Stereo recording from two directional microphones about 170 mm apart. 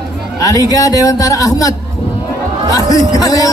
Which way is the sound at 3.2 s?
20° left (ahead or behind).